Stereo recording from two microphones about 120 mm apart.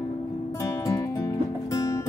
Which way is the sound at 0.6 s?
25° left (ahead or behind).